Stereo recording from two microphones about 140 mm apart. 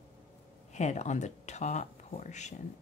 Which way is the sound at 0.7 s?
55° left (ahead or behind).